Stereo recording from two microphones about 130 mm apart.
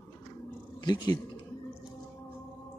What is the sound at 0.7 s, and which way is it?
Speech, 30° left (ahead or behind).